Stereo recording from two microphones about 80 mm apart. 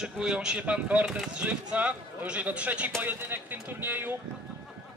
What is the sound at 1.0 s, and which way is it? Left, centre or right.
Speech, centre.